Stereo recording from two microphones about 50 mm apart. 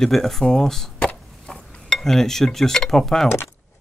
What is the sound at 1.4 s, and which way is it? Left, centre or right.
Dishes, centre.